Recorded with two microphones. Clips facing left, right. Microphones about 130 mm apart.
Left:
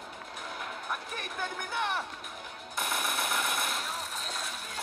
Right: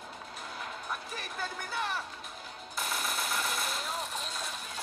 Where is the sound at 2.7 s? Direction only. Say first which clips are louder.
Left 2 dB; 55° left (ahead or behind).